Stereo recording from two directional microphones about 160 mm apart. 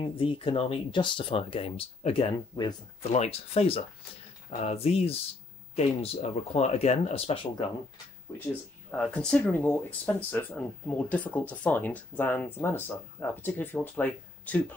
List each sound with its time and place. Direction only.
0.0 s speech: 35° left (ahead or behind)
3.0 s speech: 40° left (ahead or behind)
8.9 s speech: 5° left (ahead or behind)